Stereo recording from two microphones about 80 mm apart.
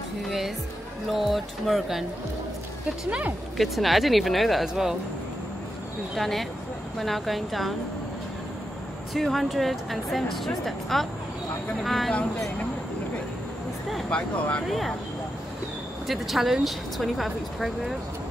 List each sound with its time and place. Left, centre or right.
1.1 s speech: centre
3.1 s speech: centre
3.5 s speech: centre
6.1 s speech: centre
9.1 s speech: centre
14.1 s speech: centre
14.7 s speech: centre
16.1 s speech: centre